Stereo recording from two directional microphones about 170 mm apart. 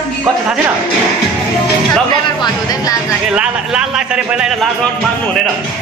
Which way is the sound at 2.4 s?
20° left (ahead or behind).